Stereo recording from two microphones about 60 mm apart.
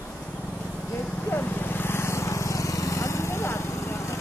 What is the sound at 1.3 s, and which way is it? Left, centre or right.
Vehicle, left.